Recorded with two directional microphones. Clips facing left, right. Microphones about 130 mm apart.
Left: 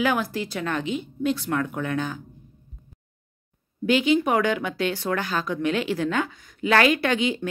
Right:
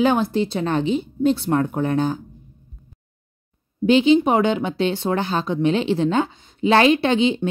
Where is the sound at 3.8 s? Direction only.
25° right (ahead or behind).